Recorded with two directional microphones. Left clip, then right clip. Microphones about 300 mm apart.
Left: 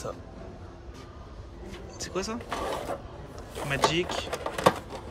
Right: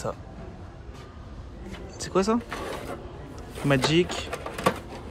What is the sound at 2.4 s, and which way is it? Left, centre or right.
Vehicle, left.